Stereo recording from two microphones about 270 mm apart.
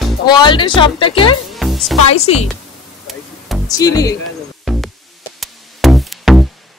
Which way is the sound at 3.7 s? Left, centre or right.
Centre.